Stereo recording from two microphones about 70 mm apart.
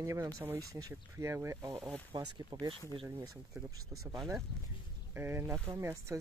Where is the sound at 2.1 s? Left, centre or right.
Right.